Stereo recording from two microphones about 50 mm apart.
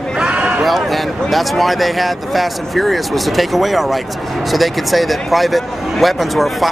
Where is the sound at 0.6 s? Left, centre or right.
Centre.